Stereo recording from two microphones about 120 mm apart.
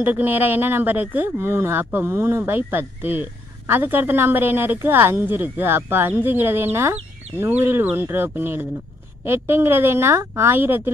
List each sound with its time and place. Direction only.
0.0 s a woman's voice: 15° right (ahead or behind)